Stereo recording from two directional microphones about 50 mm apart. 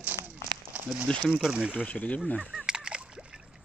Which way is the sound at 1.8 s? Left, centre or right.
Left.